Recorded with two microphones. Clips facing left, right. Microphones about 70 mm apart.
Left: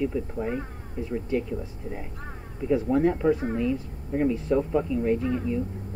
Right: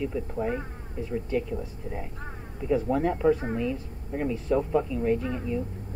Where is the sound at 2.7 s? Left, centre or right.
Centre.